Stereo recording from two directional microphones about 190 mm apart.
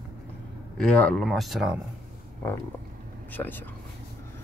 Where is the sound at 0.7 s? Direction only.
5° left (ahead or behind).